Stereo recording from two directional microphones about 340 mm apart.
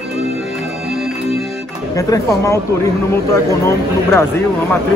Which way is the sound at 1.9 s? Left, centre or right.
Centre.